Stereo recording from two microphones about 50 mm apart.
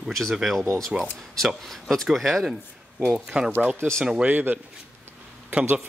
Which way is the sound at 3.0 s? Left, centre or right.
Centre.